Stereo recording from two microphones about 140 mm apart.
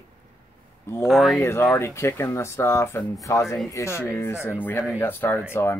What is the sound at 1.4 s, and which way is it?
Speech, 20° left (ahead or behind).